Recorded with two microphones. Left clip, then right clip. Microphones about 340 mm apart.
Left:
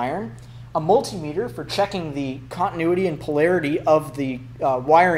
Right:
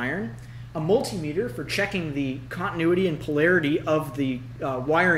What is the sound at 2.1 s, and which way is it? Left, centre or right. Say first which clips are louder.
A man's voice: left 4 dB; centre.